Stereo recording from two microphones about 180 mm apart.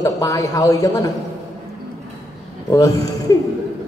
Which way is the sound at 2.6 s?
20° left (ahead or behind).